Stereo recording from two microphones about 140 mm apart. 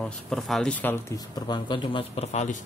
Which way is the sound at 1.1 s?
30° left (ahead or behind).